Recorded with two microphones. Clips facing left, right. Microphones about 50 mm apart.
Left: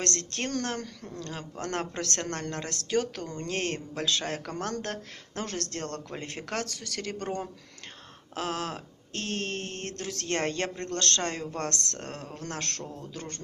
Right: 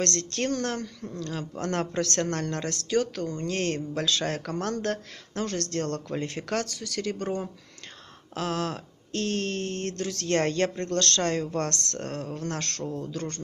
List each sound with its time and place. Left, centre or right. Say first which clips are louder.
0.0 s speech: right 4 dB; left
8.4 s speech: right 3 dB; left